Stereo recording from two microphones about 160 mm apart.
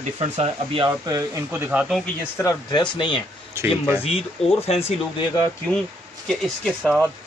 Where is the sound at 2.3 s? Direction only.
25° left (ahead or behind).